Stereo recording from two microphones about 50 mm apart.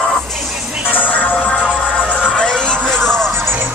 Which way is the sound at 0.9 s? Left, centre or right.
Left.